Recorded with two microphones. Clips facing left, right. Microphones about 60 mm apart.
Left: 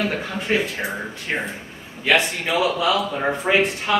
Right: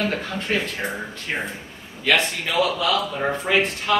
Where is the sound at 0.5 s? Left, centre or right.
Centre.